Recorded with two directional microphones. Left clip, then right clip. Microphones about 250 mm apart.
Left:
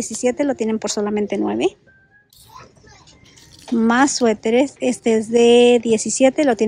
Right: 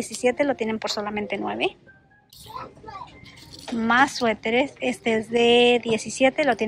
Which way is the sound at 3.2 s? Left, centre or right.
Centre.